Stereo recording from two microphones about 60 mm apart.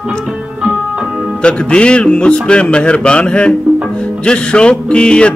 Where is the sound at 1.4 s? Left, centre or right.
Centre.